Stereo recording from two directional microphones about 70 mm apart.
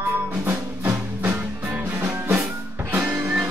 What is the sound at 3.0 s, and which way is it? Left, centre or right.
Music, centre.